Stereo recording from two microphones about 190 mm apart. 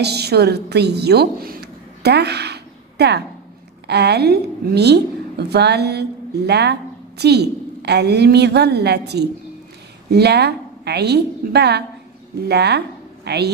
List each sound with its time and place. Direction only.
0.0 s a woman's voice: 60° right (ahead or behind)